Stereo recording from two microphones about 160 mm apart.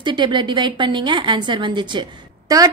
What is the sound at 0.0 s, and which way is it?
A woman's voice, 30° right (ahead or behind).